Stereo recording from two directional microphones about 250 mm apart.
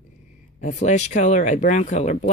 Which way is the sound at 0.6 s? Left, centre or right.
Left.